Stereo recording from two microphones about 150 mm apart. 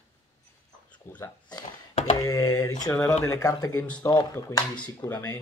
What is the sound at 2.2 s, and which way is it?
Speech, 25° left (ahead or behind).